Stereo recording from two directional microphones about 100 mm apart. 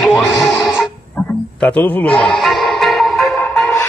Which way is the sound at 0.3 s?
30° left (ahead or behind).